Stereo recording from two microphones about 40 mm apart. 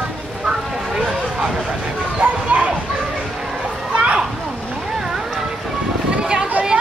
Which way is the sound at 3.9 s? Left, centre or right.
Right.